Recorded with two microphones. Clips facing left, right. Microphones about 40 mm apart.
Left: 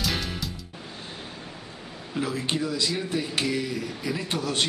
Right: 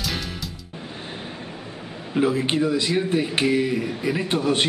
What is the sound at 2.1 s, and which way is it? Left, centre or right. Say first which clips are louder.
Speech: right 7 dB; right.